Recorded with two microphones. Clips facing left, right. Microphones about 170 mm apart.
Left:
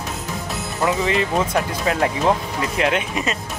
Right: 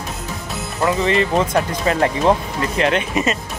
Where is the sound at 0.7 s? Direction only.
5° left (ahead or behind).